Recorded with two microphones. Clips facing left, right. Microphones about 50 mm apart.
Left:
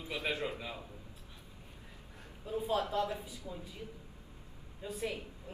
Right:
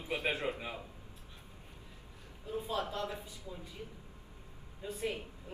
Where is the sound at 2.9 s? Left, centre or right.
Left.